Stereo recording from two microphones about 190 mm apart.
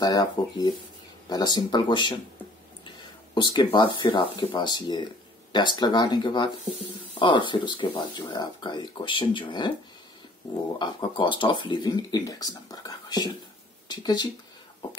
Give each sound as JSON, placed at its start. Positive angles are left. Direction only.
{"t": 0.0, "sound": "speech", "side_deg": 20}
{"t": 3.3, "sound": "speech", "side_deg": 25}
{"t": 10.8, "sound": "speech", "side_deg": 25}